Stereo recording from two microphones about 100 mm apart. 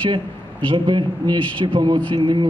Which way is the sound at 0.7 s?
55° right (ahead or behind).